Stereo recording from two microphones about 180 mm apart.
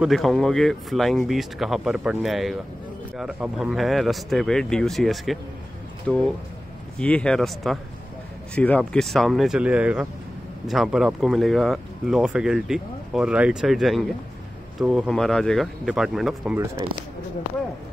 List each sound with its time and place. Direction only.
0.0 s speech: centre (ahead or behind)
16.8 s speech: 20° right (ahead or behind)